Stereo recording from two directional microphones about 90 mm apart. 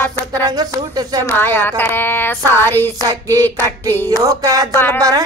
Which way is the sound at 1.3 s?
25° left (ahead or behind).